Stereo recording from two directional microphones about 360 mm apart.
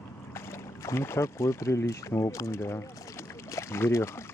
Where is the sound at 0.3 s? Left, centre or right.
Centre.